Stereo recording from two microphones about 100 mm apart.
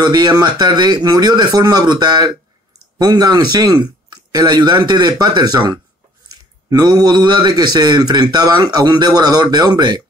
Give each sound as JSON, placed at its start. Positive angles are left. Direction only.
{"t": 0.0, "sound": "a man's voice", "side_deg": -45}